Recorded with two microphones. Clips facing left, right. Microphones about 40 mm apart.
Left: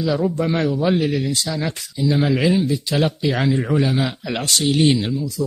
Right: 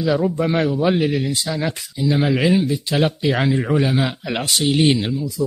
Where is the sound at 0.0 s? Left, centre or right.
Centre.